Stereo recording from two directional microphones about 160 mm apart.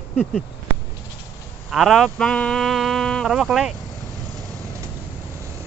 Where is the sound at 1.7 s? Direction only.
Centre (ahead or behind).